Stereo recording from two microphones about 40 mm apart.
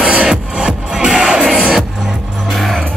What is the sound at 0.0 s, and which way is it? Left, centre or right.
Music, right.